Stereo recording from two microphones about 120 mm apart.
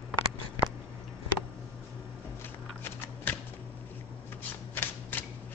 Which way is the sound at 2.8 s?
15° left (ahead or behind).